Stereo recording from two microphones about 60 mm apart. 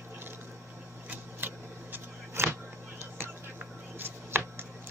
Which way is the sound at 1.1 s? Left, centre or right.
Right.